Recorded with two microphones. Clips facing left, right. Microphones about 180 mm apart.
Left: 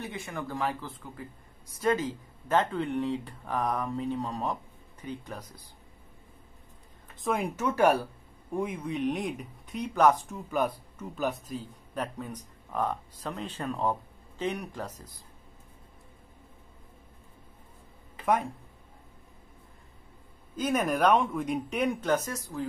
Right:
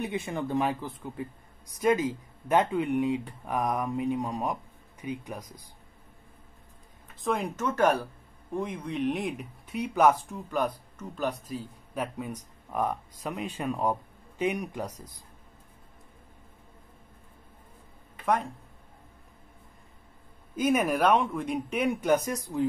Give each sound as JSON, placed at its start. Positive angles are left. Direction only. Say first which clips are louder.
{"t": 0.0, "sound": "speech", "louder": "right 5 dB", "side_deg": -20}
{"t": 7.2, "sound": "speech", "louder": "even", "side_deg": 5}
{"t": 18.2, "sound": "speech", "louder": "even", "side_deg": 0}
{"t": 20.5, "sound": "speech", "louder": "right 3 dB", "side_deg": -10}